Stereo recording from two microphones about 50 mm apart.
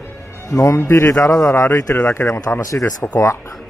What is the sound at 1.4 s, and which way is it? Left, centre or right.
Speech, left.